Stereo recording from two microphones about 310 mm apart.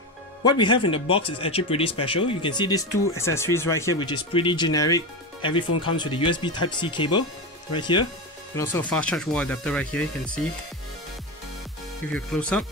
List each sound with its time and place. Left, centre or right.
0.4 s speech: centre
5.7 s speech: left
5.9 s speech: centre
12.1 s speech: centre